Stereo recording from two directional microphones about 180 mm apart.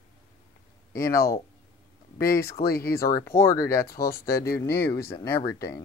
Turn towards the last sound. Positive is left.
turn(degrees=20)  # may be behind; listen again after turning